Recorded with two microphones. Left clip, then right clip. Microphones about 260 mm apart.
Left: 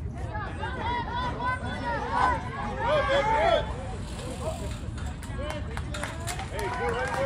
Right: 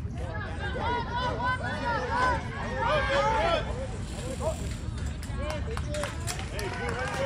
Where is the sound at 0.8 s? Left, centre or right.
Right.